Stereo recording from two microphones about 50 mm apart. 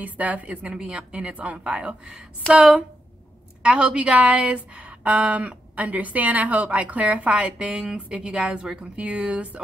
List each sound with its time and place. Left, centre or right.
0.0 s a woman's voice: right